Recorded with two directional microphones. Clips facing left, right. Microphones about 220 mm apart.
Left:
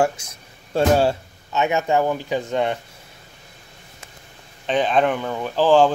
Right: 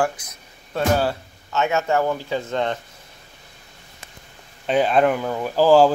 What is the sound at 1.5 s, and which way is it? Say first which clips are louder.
A man's voice: left 1 dB; 15° left (ahead or behind).